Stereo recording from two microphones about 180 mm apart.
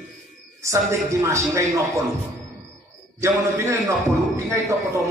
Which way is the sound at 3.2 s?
15° right (ahead or behind).